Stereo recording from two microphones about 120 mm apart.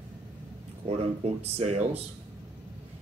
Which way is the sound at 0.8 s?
60° right (ahead or behind).